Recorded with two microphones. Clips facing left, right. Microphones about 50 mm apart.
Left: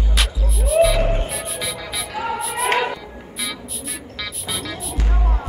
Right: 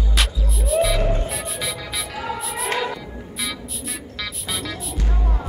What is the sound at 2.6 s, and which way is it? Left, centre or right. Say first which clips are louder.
Music: left 4 dB; left.